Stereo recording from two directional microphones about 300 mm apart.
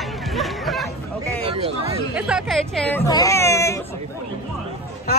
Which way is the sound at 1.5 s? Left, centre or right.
Centre.